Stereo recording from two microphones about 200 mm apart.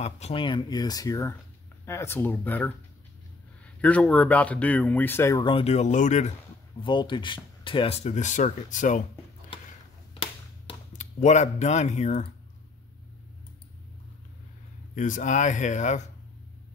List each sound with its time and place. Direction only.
0.0 s speech: 30° left (ahead or behind); by 5.4 s 10° left (ahead or behind)
5.4 s speech: 25° left (ahead or behind)
6.8 s speech: 25° left (ahead or behind); by 9.0 s 40° left (ahead or behind)
10.1 s a sound: 25° left (ahead or behind)
10.9 s speech: 35° left (ahead or behind)
15.0 s speech: 40° left (ahead or behind)